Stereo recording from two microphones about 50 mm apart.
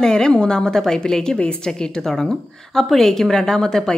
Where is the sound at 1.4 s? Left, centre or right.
Left.